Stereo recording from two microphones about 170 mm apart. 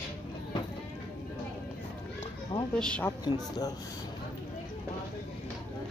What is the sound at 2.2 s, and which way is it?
Children playing, 30° left (ahead or behind).